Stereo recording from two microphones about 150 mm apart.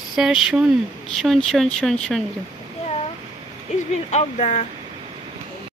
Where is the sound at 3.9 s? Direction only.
50° left (ahead or behind).